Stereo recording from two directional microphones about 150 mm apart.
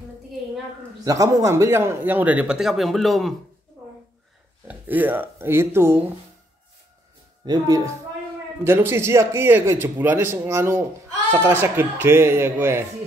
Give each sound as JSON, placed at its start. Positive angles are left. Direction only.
{"t": 1.0, "sound": "a man's voice", "side_deg": -20}
{"t": 4.6, "sound": "a man's voice", "side_deg": -10}
{"t": 7.4, "sound": "a man's voice", "side_deg": -25}